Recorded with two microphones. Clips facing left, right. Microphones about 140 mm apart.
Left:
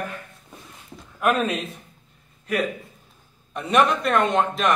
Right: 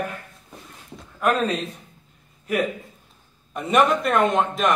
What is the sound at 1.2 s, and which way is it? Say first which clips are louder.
Speech: even; 5° left (ahead or behind).